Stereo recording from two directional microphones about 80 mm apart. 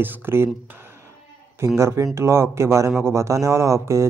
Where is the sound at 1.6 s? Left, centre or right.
Right.